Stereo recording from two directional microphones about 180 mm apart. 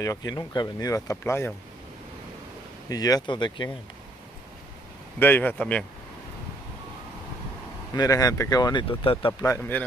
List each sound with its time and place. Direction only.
0.0 s speech: 20° left (ahead or behind)
2.9 s speech: 20° left (ahead or behind)
5.2 s speech: 10° left (ahead or behind)
7.9 s speech: 20° left (ahead or behind)
9.4 s speech: 15° left (ahead or behind)